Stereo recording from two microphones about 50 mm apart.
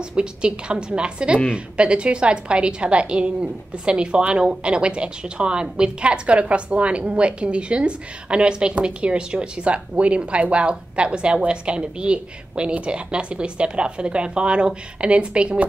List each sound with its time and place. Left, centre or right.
0.1 s a woman's voice: centre